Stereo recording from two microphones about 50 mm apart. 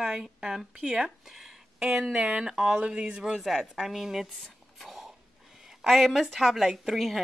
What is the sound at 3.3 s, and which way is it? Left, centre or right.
Speech, centre.